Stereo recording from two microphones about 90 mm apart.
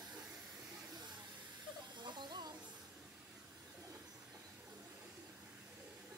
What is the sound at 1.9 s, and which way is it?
Hiss, 55° right (ahead or behind).